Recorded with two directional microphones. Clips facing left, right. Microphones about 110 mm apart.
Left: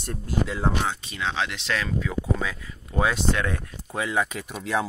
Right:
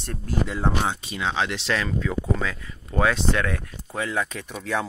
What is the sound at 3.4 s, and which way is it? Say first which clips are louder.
Speech: right 1 dB; 25° left (ahead or behind).